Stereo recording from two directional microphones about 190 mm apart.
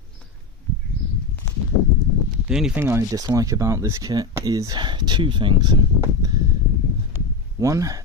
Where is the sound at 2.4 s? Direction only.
5° right (ahead or behind).